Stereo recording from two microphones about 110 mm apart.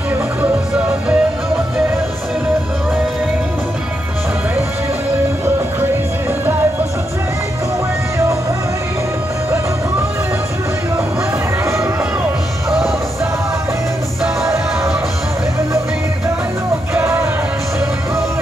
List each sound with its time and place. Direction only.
0.4 s music: 10° right (ahead or behind)
11.6 s music: 25° right (ahead or behind)
16.9 s music: 25° right (ahead or behind)